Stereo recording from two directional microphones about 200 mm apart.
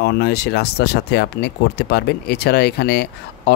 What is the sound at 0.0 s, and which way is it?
Speech, 55° left (ahead or behind).